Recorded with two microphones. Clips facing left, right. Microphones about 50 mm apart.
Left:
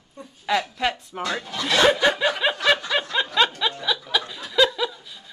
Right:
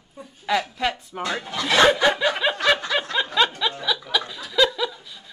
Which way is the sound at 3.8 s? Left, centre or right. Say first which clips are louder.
Even; centre.